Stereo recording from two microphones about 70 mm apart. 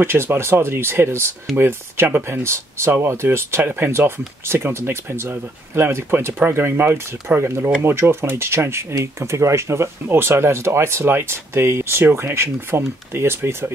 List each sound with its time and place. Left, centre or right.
0.0 s speech: right
2.4 s speech: right